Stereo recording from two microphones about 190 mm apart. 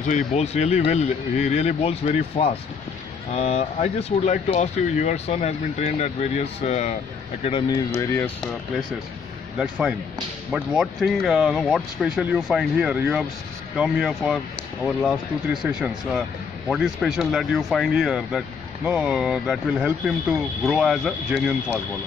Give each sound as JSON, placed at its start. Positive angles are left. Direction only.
{"t": 0.0, "sound": "speech", "side_deg": 35}
{"t": 8.0, "sound": "speech", "side_deg": 10}
{"t": 9.6, "sound": "speech", "side_deg": -5}